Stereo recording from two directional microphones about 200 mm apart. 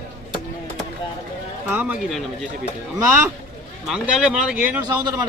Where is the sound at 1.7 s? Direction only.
5° right (ahead or behind).